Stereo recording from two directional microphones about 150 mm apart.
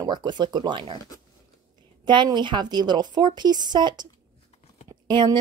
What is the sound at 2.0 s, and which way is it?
A woman's voice, 30° right (ahead or behind).